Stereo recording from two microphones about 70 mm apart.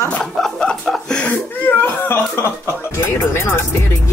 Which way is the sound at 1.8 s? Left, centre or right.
Left.